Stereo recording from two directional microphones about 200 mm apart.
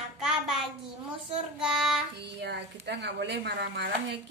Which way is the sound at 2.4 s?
60° right (ahead or behind).